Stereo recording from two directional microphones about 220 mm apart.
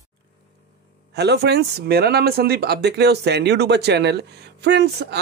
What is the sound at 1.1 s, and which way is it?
Speech, 50° right (ahead or behind).